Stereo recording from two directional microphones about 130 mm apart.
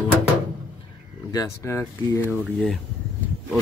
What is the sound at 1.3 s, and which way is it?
Speech, 25° left (ahead or behind).